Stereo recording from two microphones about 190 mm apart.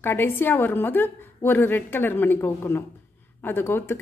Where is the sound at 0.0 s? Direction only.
10° left (ahead or behind).